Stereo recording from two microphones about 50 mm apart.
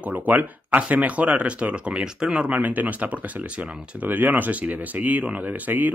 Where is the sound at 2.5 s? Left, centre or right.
Right.